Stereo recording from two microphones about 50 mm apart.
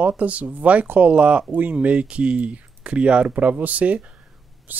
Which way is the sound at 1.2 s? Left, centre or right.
Right.